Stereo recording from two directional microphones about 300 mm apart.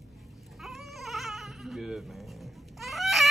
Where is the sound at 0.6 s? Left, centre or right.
Centre.